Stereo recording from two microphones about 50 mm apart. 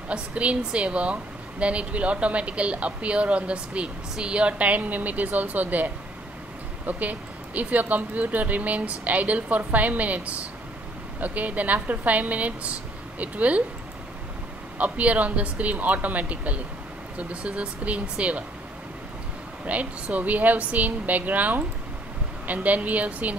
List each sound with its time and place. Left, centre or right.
0.1 s a woman's voice: right
6.9 s a woman's voice: right
14.8 s a woman's voice: right
19.6 s speech: right